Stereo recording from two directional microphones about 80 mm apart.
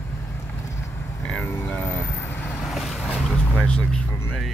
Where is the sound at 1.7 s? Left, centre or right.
Left.